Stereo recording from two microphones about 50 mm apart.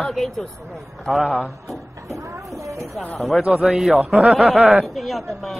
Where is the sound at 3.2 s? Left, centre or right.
Centre.